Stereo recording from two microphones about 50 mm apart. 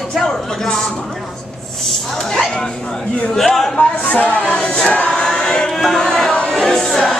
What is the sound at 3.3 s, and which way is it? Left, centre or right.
Speech, centre.